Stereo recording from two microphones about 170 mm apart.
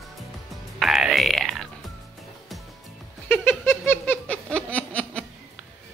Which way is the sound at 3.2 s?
10° left (ahead or behind).